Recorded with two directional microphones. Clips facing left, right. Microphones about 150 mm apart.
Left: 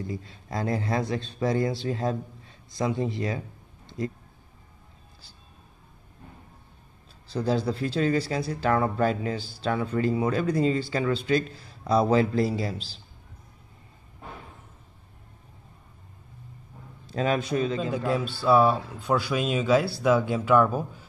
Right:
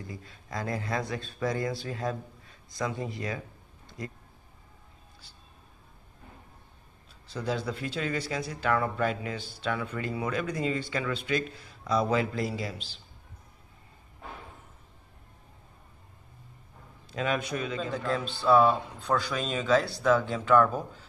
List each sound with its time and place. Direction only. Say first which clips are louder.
0.0 s a man's voice: left 8 dB; 25° left (ahead or behind)
7.2 s speech: left 6 dB; 30° left (ahead or behind)
17.1 s speech: left 5 dB; 35° left (ahead or behind)
17.7 s speech: left 4 dB; 10° left (ahead or behind)